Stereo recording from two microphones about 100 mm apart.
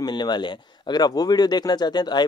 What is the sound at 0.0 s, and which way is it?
A man's voice, 45° left (ahead or behind).